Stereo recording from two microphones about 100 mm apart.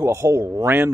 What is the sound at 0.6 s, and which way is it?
Speech, 25° right (ahead or behind).